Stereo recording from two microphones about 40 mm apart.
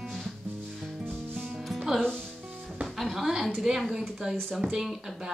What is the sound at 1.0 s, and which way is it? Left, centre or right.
Music, right.